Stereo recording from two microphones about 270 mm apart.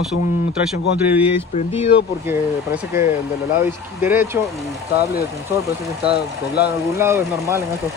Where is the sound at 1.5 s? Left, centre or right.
Left.